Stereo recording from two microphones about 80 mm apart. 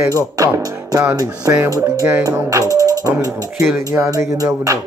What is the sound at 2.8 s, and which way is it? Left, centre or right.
Speech, right.